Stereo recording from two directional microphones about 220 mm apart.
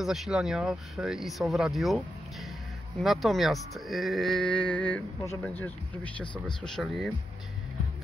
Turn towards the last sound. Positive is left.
turn(degrees=0)  # may be behind; listen again after turning